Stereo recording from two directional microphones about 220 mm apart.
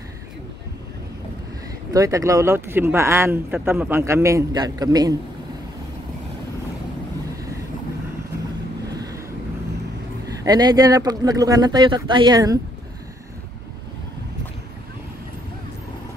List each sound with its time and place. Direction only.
1.9 s speech: 15° right (ahead or behind)
8.9 s vehicle: 15° right (ahead or behind)
10.2 s speech: 15° right (ahead or behind)